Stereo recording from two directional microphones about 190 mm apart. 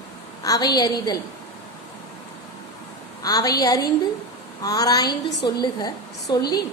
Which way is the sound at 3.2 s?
20° left (ahead or behind).